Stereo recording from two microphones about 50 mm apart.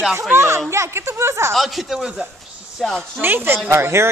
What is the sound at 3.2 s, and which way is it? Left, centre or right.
Speech, right.